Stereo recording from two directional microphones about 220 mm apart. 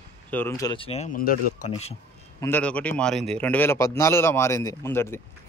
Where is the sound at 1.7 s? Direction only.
30° left (ahead or behind).